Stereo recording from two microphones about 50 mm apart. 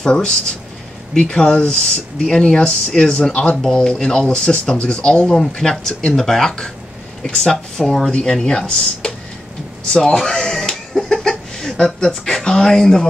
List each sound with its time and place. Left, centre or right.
0.0 s speech: centre
7.5 s speech: centre
8.1 s speech: centre
11.1 s a sound: centre
12.3 s speech: centre